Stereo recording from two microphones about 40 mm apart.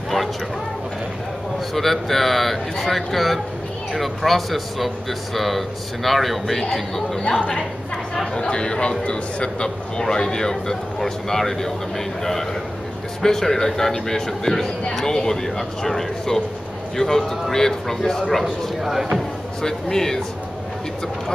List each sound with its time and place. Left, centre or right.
1.7 s speech: centre
7.3 s a woman's voice: left; by 11.7 s centre
13.2 s a man's voice: centre
19.6 s a man's voice: centre